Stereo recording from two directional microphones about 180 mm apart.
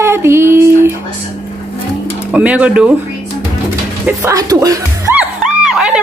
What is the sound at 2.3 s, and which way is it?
Speech, 5° right (ahead or behind).